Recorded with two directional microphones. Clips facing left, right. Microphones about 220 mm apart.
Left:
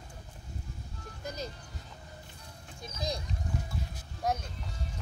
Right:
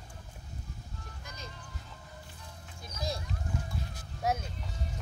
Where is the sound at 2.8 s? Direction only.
20° left (ahead or behind).